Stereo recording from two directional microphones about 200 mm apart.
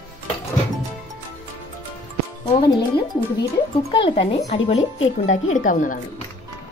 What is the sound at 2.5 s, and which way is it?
Speech, 25° left (ahead or behind).